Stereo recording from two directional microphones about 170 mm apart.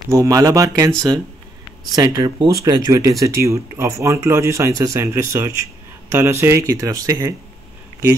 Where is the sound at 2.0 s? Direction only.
20° right (ahead or behind).